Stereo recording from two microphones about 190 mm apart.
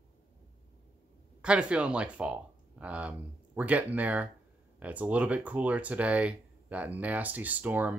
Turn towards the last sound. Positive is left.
turn(degrees=-10)  # may be behind; listen again after turning